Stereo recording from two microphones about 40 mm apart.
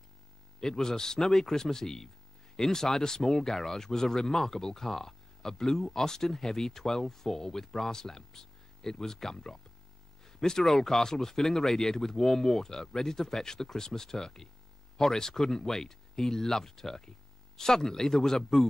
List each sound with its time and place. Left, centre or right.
0.6 s speech: centre
10.2 s a sound: centre
10.6 s speech: centre